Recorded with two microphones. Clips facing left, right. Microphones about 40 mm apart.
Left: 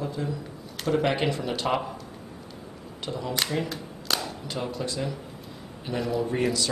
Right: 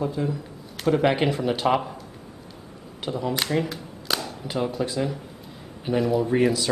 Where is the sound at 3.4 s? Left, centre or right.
Centre.